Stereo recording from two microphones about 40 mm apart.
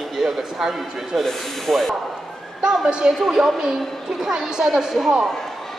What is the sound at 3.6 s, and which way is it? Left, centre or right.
Speech, centre.